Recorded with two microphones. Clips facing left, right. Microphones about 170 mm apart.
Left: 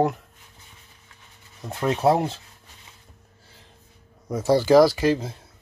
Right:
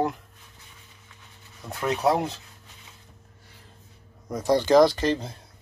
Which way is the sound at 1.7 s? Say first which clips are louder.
Left 3 dB; 25° left (ahead or behind).